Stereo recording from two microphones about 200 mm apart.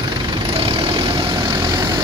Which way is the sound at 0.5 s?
30° right (ahead or behind).